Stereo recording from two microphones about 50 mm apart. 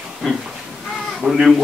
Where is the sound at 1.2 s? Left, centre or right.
Centre.